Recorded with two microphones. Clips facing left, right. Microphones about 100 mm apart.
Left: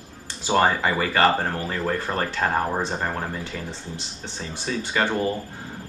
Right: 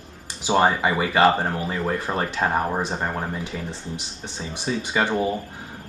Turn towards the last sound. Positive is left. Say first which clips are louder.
# right 1 dB
turn(degrees=-10)  # may be behind; listen again after turning